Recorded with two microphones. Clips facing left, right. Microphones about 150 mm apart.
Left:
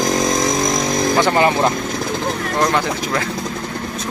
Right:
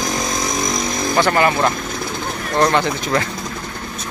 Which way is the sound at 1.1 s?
20° left (ahead or behind).